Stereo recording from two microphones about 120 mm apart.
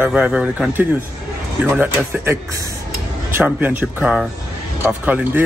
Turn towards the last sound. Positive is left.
turn(degrees=-10)  # may be behind; listen again after turning